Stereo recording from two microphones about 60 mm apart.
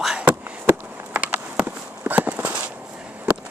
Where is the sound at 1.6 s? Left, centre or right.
Right.